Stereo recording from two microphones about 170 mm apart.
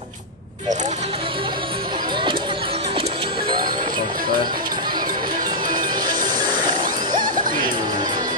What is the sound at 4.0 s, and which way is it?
Music, 55° right (ahead or behind).